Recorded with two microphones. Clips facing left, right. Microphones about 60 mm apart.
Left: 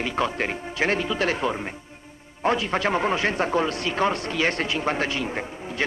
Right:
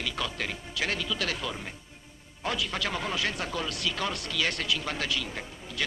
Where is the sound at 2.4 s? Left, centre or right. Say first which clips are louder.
Left 9 dB; left.